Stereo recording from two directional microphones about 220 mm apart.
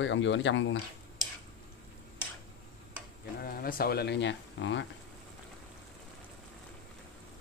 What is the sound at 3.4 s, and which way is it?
Speech, 40° left (ahead or behind).